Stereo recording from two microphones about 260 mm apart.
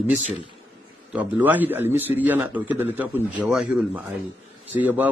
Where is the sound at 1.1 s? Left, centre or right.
Centre.